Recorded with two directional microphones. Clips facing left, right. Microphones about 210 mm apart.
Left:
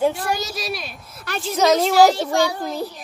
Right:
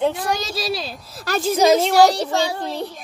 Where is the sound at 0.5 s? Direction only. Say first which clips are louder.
Right 4 dB; 30° right (ahead or behind).